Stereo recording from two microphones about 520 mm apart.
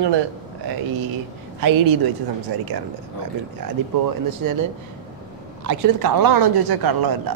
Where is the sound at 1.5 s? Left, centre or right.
Right.